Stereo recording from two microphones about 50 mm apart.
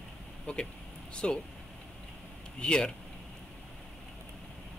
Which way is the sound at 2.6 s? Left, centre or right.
Centre.